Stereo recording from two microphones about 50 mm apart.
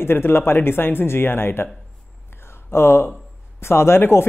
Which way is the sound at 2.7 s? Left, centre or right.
Left.